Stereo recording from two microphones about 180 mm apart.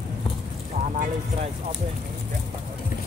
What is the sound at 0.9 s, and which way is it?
Speech, 50° right (ahead or behind).